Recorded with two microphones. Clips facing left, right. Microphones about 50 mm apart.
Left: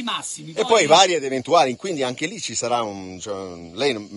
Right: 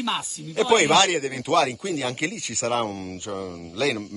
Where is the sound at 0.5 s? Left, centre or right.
Centre.